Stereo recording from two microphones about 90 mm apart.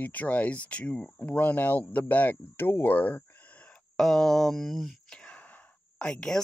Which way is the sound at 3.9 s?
5° left (ahead or behind).